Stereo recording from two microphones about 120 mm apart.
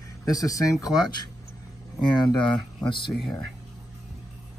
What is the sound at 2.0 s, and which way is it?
Speech, 40° left (ahead or behind).